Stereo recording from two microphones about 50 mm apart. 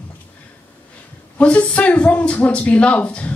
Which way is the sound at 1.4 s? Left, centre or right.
Left.